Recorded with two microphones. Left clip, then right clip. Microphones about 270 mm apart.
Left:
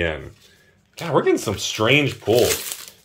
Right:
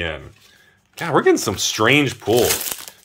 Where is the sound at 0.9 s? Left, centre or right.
Centre.